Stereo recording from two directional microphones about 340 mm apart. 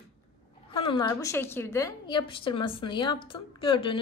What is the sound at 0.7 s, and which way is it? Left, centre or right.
A woman's voice, centre.